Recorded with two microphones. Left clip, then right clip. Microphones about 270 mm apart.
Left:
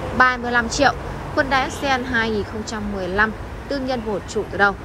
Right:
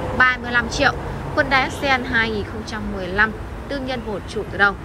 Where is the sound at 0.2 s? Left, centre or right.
Centre.